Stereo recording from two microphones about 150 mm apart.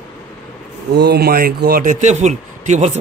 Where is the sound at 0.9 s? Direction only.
90° right; by 2.9 s 55° right (ahead or behind).